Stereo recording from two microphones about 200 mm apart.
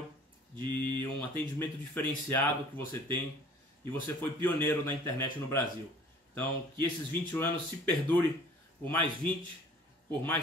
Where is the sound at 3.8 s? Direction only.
10° left (ahead or behind).